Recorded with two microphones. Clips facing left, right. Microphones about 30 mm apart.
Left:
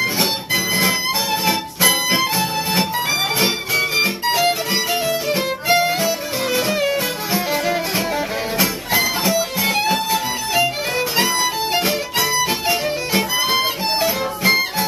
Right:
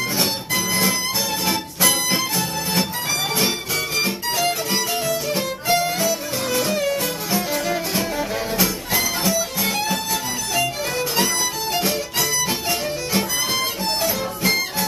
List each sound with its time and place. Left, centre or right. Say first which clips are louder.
0.0 s music: left 3 dB; centre